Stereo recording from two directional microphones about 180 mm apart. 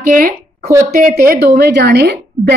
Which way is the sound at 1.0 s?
55° right (ahead or behind).